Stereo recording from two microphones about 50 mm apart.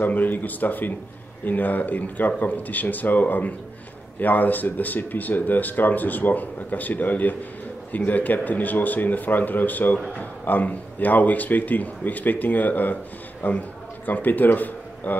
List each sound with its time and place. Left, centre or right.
0.0 s a man's voice: left